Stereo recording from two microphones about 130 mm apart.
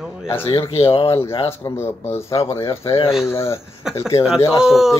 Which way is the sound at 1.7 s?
20° left (ahead or behind).